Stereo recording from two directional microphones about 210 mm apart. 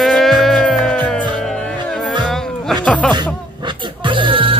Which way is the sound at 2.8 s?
5° left (ahead or behind).